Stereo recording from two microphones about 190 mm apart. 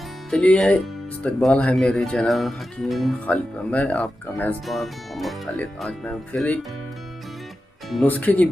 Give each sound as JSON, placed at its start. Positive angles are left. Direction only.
{"t": 0.3, "sound": "speech", "side_deg": 5}
{"t": 7.9, "sound": "speech", "side_deg": 10}